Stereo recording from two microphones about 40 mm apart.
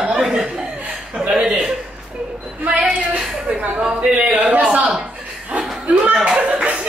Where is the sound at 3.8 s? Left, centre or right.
Right.